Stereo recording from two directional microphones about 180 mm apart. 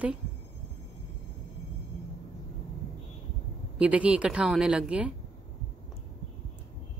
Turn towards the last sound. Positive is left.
turn(degrees=-5)  # may be behind; listen again after turning